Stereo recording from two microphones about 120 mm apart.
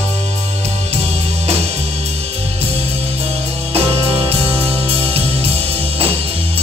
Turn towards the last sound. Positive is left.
turn(degrees=-55)  # may be behind; listen again after turning